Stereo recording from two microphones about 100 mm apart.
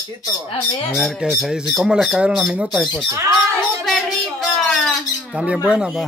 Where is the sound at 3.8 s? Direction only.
5° left (ahead or behind).